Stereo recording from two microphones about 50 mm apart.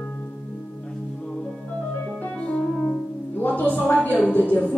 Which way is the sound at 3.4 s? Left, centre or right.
Left.